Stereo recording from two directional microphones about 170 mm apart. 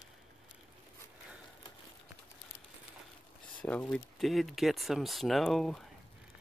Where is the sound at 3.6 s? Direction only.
5° left (ahead or behind).